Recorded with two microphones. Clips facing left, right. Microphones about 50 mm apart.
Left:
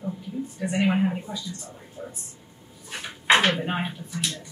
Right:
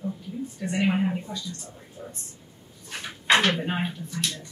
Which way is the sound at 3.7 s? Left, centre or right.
Centre.